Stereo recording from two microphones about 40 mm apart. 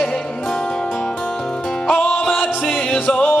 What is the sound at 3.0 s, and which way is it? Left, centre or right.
Music, left.